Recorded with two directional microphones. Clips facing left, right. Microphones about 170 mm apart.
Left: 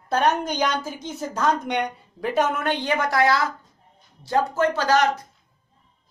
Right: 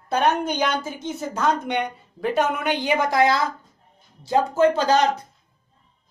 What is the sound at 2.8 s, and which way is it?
Speech, 15° right (ahead or behind).